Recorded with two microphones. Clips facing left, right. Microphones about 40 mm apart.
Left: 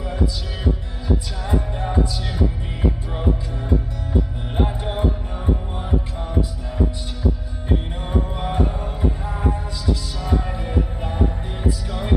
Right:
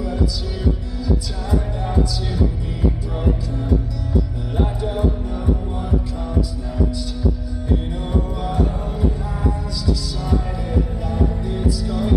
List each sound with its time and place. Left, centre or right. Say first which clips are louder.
0.0 s heart sounds: right 2 dB; left
1.0 s music: even; left
4.1 s music: right 1 dB; left
5.9 s heart sounds: even; left
7.7 s music: right 1 dB; left